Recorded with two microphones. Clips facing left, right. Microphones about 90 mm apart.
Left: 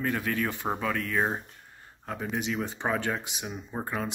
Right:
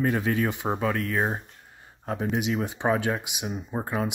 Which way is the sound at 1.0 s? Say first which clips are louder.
Right 2 dB; 5° right (ahead or behind).